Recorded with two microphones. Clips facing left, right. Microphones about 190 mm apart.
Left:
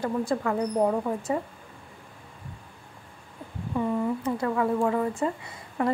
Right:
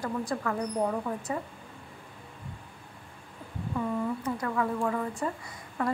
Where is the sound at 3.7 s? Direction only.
25° left (ahead or behind).